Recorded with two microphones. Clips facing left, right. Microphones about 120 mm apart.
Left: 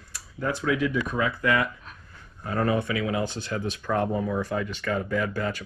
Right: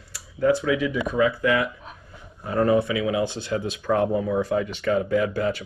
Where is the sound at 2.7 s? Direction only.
15° right (ahead or behind).